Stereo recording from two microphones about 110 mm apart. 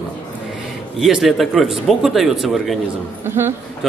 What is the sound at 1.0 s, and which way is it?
Speech, centre (ahead or behind).